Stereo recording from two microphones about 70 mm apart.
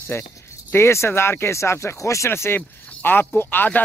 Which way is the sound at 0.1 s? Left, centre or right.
Left.